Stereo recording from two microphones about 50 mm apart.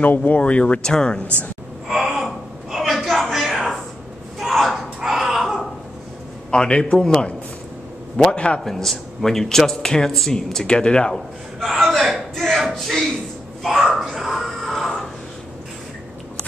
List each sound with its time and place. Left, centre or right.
0.0 s speech: left; by 1.2 s centre
1.9 s gasp: centre
3.1 s a sound: centre
4.4 s wail: centre
6.5 s speech: centre
8.6 s speech: centre
11.6 s a sound: centre
12.6 s speech: centre
14.1 s a sound: centre